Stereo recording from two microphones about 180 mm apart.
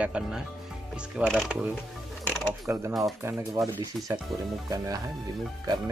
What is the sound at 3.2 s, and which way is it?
Speech, 15° right (ahead or behind).